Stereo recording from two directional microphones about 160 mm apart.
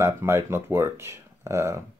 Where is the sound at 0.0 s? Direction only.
15° right (ahead or behind).